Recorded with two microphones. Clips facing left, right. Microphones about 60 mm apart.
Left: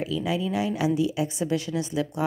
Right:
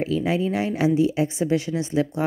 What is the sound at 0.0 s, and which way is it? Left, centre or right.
A woman's voice, right.